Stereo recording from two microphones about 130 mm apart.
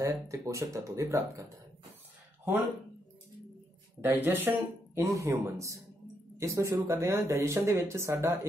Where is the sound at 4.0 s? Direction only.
15° right (ahead or behind).